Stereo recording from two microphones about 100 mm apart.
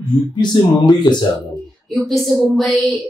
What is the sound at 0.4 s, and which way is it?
Speech, 50° left (ahead or behind).